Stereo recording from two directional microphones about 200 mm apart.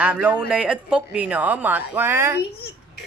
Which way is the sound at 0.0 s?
5° right (ahead or behind).